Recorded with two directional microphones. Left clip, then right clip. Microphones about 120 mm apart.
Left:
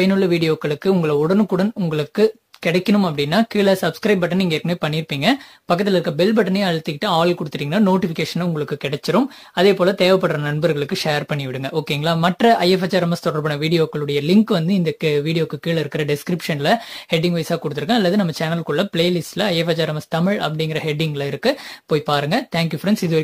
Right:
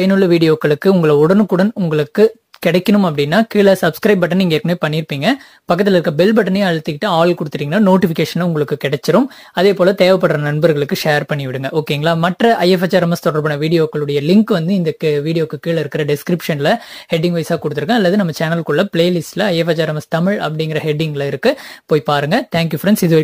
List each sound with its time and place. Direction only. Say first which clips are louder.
0.0 s speech: right 5 dB; 45° right (ahead or behind)
2.6 s speech: right 5 dB; 45° right (ahead or behind); by 20.5 s 20° right (ahead or behind)
20.5 s speech: right 4 dB; 35° right (ahead or behind)